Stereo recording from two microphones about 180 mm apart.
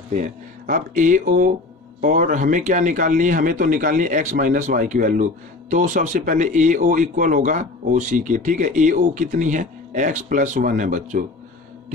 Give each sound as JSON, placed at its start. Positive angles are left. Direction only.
{"t": 0.1, "sound": "speech", "side_deg": -45}